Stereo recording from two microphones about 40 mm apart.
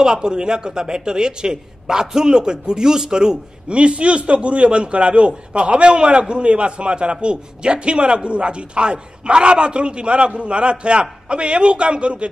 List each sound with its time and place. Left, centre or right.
0.0 s a man's voice: centre
3.7 s a man's voice: right